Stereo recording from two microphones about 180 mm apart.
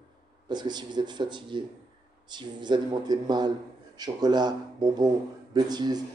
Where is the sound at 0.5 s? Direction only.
25° right (ahead or behind).